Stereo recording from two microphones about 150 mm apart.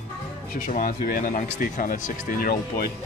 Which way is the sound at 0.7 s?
65° left (ahead or behind).